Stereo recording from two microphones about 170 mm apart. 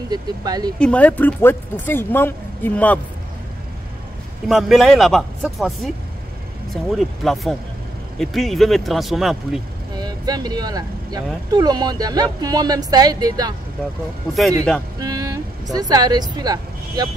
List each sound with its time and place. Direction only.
0.1 s a woman's voice: 25° right (ahead or behind)
0.7 s speech: 5° left (ahead or behind)
4.5 s speech: centre (ahead or behind)
9.9 s a woman's voice: 25° right (ahead or behind)
15.0 s speech: 20° right (ahead or behind)